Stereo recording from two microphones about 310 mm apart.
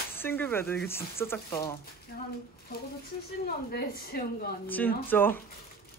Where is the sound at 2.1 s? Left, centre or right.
Left.